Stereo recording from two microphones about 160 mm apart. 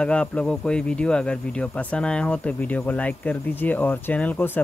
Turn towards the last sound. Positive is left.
turn(degrees=10)  # may be behind; listen again after turning